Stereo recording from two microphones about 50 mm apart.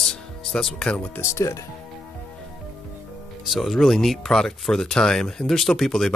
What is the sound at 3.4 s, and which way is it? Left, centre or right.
Speech, centre.